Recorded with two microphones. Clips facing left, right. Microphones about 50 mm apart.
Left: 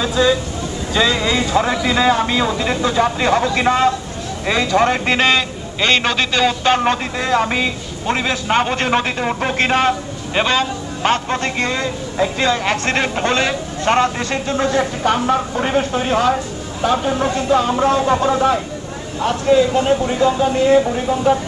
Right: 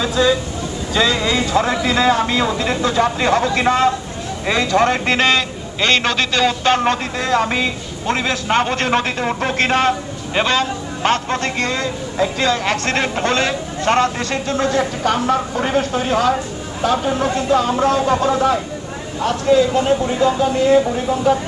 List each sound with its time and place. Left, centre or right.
0.0 s a man's voice: centre